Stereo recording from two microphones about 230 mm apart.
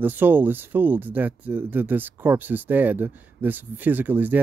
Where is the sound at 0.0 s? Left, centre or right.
Centre.